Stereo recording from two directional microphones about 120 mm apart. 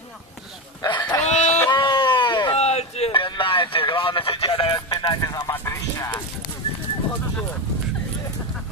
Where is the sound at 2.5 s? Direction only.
65° left (ahead or behind).